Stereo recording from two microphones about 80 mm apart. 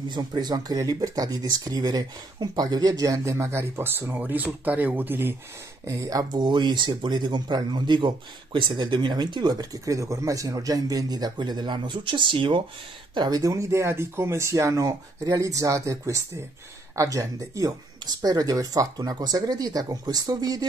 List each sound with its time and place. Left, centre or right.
0.1 s speech: right
5.9 s speech: right
6.4 s speech: right
8.5 s speech: right
13.1 s speech: right
13.4 s speech: right